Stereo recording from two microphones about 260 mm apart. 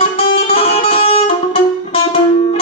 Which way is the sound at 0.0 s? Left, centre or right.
Left.